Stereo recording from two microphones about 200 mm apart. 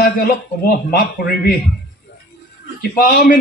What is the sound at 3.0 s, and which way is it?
Speech, 45° left (ahead or behind).